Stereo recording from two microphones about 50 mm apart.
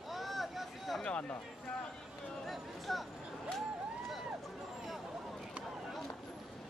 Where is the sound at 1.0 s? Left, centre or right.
Left.